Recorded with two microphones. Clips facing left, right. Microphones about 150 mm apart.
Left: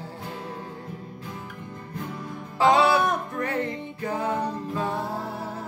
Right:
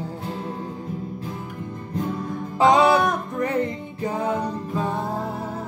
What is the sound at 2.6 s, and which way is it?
Music, 20° right (ahead or behind).